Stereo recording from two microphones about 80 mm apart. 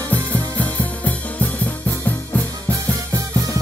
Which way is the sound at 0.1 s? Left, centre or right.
Centre.